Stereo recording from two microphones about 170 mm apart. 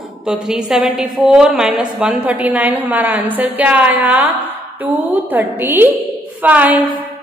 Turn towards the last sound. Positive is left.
turn(degrees=-10)  # may be behind; listen again after turning